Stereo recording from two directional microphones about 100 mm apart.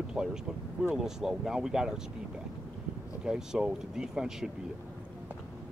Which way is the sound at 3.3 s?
5° right (ahead or behind).